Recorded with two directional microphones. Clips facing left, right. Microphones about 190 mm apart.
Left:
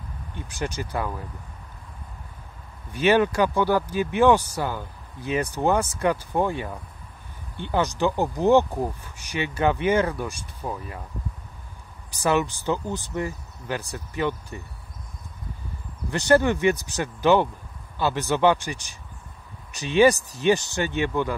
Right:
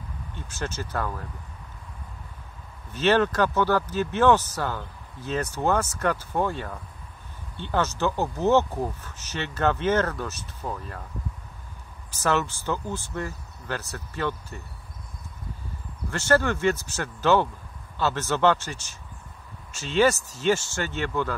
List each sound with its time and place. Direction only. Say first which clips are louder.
0.3 s speech: left 3 dB; 15° left (ahead or behind)
2.9 s speech: left 2 dB; 10° left (ahead or behind)
12.1 s speech: left 2 dB; 15° left (ahead or behind)
16.1 s speech: left 3 dB; 15° left (ahead or behind)